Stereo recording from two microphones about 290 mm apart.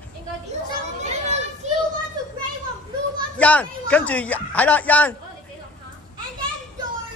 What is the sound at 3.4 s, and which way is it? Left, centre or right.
A man's voice, centre.